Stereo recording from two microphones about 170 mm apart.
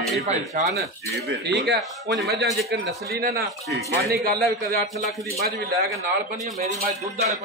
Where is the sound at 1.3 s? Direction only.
90° right.